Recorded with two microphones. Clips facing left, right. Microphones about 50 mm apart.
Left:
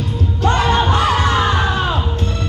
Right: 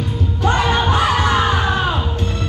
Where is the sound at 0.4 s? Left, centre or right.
Centre.